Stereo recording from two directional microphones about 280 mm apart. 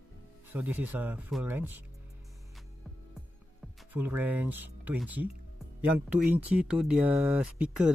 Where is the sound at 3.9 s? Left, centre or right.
Centre.